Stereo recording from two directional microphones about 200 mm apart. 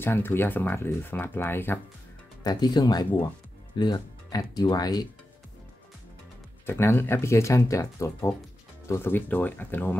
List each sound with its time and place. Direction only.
0.0 s speech: 10° left (ahead or behind)
6.6 s speech: 10° left (ahead or behind)